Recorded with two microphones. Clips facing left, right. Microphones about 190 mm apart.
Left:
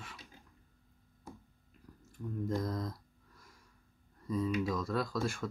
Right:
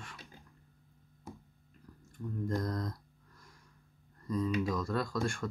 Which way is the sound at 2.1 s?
5° left (ahead or behind).